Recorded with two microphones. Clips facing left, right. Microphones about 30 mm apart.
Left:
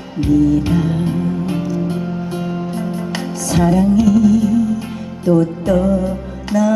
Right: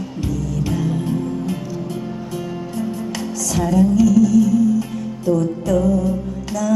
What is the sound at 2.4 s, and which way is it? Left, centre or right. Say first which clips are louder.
Music: left 3 dB; left.